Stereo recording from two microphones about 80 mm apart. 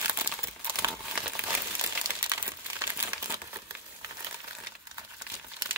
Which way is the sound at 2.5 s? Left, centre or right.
Right.